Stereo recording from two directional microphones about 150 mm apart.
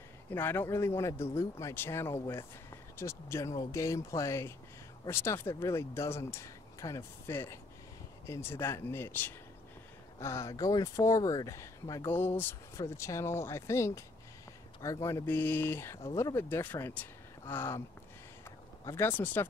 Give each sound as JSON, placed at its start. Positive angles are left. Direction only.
{"t": 0.3, "sound": "speech", "side_deg": 15}
{"t": 12.1, "sound": "speech", "side_deg": 15}
{"t": 18.9, "sound": "speech", "side_deg": 15}